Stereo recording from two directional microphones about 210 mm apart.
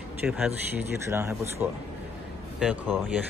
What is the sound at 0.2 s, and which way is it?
Speech, 5° right (ahead or behind).